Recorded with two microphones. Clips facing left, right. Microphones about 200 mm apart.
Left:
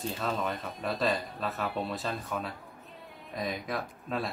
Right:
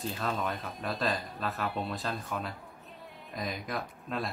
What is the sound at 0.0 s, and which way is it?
Speech, centre (ahead or behind).